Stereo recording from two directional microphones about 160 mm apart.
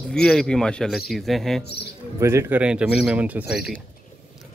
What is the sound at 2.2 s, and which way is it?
A man's voice, 15° right (ahead or behind).